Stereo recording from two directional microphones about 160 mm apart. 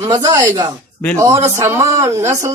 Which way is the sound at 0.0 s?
20° right (ahead or behind).